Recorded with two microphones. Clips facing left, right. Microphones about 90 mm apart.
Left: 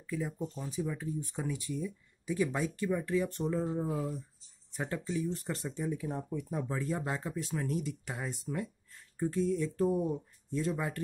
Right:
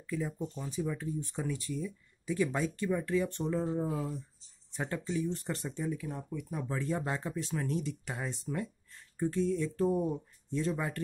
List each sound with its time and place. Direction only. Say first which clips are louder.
0.0 s speech: right 1 dB; 5° left (ahead or behind)
5.9 s speech: left 4 dB; 25° left (ahead or behind)
6.7 s speech: right 3 dB; 10° left (ahead or behind)